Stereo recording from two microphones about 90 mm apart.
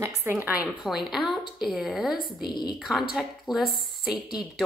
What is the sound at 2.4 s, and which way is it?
Speech, 55° left (ahead or behind).